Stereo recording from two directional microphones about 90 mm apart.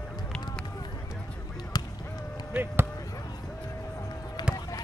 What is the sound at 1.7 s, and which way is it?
Honk, 45° left (ahead or behind).